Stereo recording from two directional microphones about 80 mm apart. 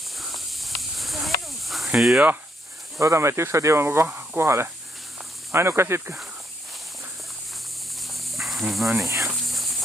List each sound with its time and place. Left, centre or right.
0.2 s snake: centre
2.0 s speech: centre
3.0 s speech: right
8.1 s dog: centre
9.3 s cricket: centre